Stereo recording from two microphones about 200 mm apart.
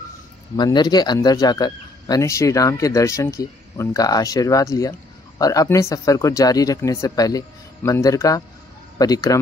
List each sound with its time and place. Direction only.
0.6 s speech: 20° left (ahead or behind)